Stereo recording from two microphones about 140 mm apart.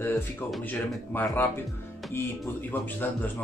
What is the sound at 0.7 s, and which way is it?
Speech, 15° left (ahead or behind).